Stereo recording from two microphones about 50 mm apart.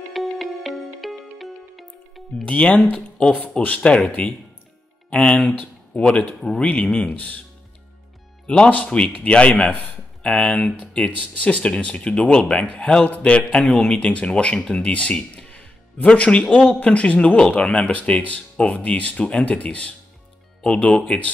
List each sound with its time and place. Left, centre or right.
0.1 s music: centre
2.4 s speech: left
3.2 s speech: centre
5.1 s speech: left
6.6 s speech: left
8.5 s speech: left